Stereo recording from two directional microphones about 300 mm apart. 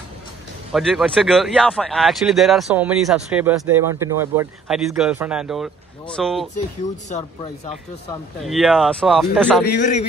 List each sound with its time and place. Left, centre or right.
0.7 s speech: centre
8.5 s speech: centre
9.7 s speech: left